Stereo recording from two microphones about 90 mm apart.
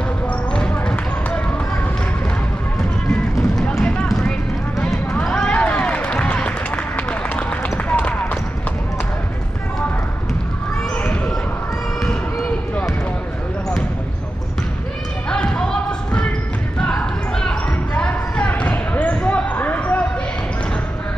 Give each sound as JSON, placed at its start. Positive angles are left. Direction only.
{"t": 0.5, "sound": "basketball bounce", "side_deg": 10}
{"t": 3.1, "sound": "a sound", "side_deg": 5}
{"t": 4.1, "sound": "clip-clop", "side_deg": 5}
{"t": 5.1, "sound": "run", "side_deg": 10}
{"t": 15.2, "sound": "basketball bounce", "side_deg": 10}